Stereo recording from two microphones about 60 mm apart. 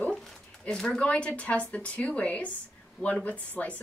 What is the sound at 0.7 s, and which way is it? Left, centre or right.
Speech, centre.